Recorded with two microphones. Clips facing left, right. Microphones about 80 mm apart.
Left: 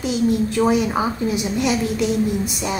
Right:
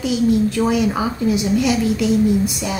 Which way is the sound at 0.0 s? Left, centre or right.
Left.